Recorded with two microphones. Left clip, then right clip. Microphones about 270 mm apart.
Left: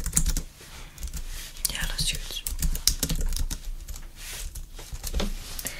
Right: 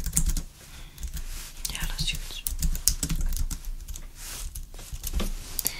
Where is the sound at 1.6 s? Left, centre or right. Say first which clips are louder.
Left 4 dB; centre.